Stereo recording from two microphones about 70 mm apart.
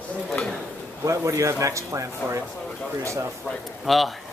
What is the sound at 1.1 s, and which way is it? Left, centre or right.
Speech, right.